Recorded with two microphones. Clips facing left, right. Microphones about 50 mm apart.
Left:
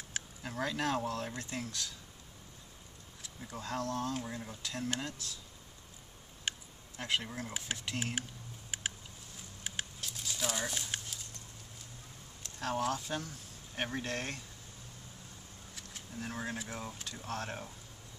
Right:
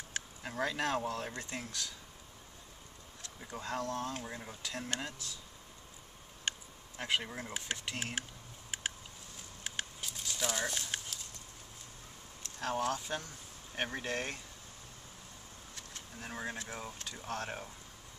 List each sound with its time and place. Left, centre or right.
0.4 s speech: centre
3.5 s speech: centre
6.5 s a sound: centre
7.0 s speech: centre
8.0 s speech: centre
9.6 s a sound: centre
12.5 s speech: centre
16.2 s speech: centre